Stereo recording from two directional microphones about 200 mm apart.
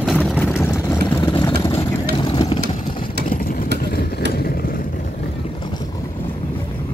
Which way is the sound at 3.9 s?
50° left (ahead or behind).